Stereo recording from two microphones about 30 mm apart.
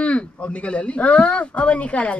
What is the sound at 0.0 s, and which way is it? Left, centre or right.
Speech, left.